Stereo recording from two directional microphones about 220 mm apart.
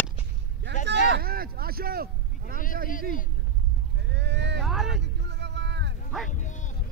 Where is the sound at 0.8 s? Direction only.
50° right (ahead or behind).